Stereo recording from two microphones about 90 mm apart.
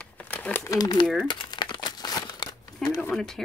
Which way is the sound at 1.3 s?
60° left (ahead or behind).